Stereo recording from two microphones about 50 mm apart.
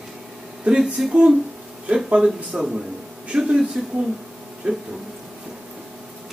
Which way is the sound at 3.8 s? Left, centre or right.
Centre.